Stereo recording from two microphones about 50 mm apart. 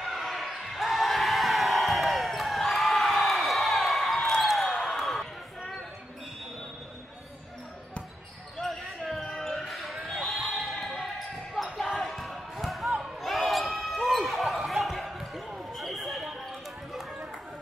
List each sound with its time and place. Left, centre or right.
0.0 s basketball bounce: centre
8.5 s basketball bounce: centre
15.7 s a sound: centre